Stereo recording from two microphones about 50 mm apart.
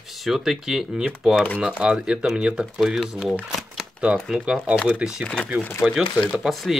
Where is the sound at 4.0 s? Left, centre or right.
Left.